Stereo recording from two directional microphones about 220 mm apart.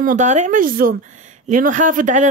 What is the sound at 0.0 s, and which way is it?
Speech, 35° right (ahead or behind).